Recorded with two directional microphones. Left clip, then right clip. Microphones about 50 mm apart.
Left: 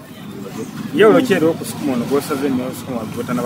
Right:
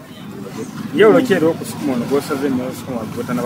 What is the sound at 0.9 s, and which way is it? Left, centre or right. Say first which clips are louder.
Speech: even; left.